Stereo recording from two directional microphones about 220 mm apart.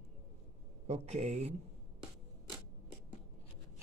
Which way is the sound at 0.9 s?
30° right (ahead or behind).